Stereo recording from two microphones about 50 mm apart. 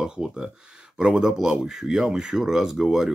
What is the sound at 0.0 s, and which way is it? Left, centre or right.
Speech, centre.